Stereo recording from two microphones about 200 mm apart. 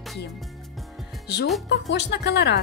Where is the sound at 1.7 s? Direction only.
60° left (ahead or behind).